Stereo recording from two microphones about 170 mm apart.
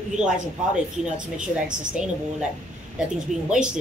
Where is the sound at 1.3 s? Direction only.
5° right (ahead or behind).